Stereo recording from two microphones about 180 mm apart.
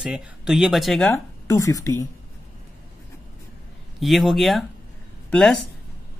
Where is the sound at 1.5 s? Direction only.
20° left (ahead or behind).